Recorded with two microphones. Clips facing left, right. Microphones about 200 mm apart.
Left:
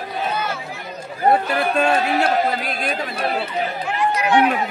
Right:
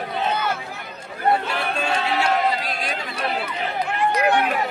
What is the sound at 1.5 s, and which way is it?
Chatter, 55° left (ahead or behind).